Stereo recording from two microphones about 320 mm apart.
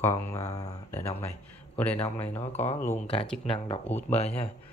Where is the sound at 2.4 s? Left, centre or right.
Centre.